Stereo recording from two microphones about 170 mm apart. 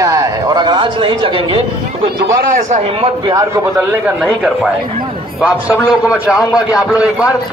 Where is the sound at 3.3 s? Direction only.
20° right (ahead or behind).